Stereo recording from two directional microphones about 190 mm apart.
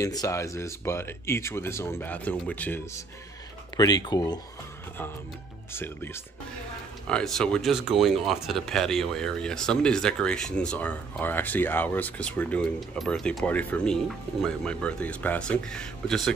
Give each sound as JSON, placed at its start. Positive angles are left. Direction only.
{"t": 0.0, "sound": "speech", "side_deg": 15}
{"t": 3.7, "sound": "speech", "side_deg": 20}
{"t": 5.7, "sound": "speech", "side_deg": 10}